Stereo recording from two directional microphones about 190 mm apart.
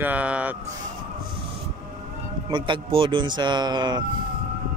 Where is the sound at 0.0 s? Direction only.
5° right (ahead or behind).